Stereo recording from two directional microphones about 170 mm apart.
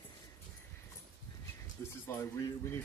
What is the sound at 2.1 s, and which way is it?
Speech, 15° left (ahead or behind).